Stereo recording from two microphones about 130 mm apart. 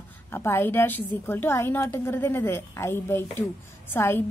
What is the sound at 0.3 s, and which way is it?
A woman's voice, 15° left (ahead or behind).